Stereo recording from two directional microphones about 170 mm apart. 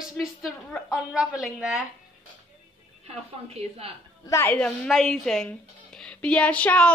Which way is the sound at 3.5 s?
35° right (ahead or behind).